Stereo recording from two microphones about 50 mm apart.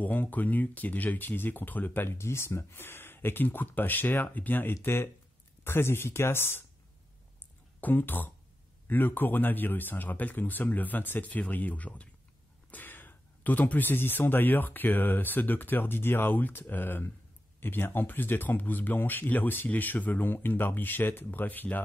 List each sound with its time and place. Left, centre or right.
0.0 s speech: left
2.0 s speech: left
4.8 s speech: left
7.8 s speech: left